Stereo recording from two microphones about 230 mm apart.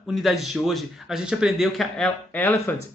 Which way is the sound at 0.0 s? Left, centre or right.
Centre.